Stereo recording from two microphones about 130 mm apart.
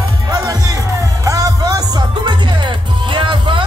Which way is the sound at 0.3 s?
30° right (ahead or behind).